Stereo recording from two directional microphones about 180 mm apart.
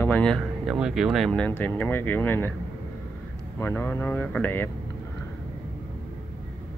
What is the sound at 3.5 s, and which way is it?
Speech, 10° left (ahead or behind).